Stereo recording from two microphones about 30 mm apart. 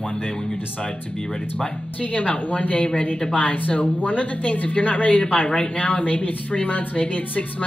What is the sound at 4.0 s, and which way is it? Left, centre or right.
A woman's voice, left.